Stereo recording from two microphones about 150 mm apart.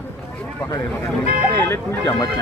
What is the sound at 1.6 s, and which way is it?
Speech, 25° left (ahead or behind).